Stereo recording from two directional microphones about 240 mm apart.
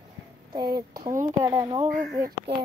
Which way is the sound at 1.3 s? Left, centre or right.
Centre.